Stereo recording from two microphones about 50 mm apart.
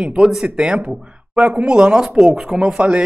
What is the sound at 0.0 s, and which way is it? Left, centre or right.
Speech, right.